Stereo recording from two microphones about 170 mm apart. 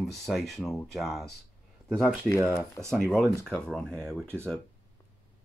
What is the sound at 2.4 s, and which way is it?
Speech, 15° right (ahead or behind).